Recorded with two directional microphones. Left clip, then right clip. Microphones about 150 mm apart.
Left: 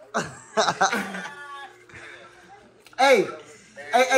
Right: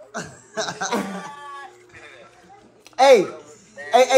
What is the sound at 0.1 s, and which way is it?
Speech, 5° right (ahead or behind).